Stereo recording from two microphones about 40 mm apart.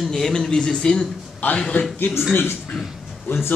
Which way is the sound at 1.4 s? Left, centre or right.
Left.